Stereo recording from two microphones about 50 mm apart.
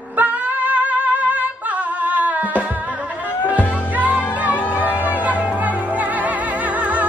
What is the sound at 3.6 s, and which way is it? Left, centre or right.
Music, left.